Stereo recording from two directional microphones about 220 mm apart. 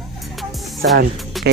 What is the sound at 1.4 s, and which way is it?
Music, centre (ahead or behind).